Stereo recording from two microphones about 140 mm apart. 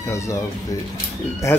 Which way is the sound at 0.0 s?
20° left (ahead or behind).